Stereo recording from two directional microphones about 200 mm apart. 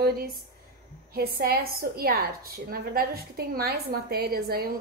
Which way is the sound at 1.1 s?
50° right (ahead or behind).